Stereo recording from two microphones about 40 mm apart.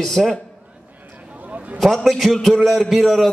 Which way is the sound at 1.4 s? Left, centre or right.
Right.